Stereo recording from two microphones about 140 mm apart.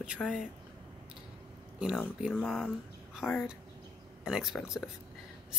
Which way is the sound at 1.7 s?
5° right (ahead or behind).